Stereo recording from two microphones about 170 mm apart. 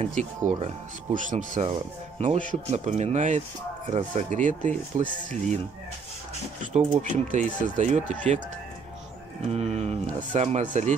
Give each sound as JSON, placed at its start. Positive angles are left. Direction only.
{"t": 0.0, "sound": "speech", "side_deg": -45}
{"t": 1.7, "sound": "speech", "side_deg": -30}
{"t": 2.3, "sound": "speech", "side_deg": -45}
{"t": 6.6, "sound": "speech", "side_deg": -45}
{"t": 9.5, "sound": "speech", "side_deg": -35}